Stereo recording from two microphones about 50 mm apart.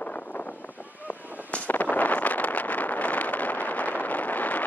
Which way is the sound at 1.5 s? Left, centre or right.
Left.